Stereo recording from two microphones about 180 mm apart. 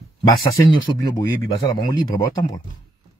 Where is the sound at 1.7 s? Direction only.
20° left (ahead or behind).